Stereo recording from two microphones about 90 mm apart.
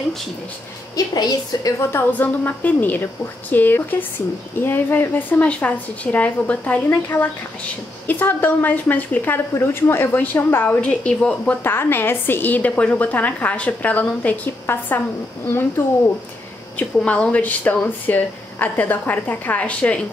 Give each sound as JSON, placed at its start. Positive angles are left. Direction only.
{"t": 0.9, "sound": "a woman's voice", "side_deg": 45}
{"t": 1.8, "sound": "a woman's voice", "side_deg": 25}
{"t": 11.6, "sound": "a woman's voice", "side_deg": 25}